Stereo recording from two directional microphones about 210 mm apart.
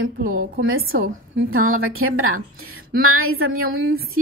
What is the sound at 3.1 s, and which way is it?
Speech, 85° right.